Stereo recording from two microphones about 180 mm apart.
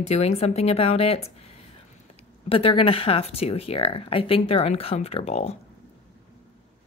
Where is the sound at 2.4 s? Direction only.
30° left (ahead or behind).